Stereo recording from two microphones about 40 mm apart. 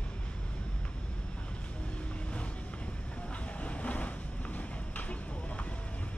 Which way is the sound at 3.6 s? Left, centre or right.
Left.